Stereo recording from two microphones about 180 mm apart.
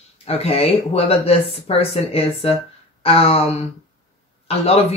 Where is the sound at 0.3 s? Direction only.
35° left (ahead or behind).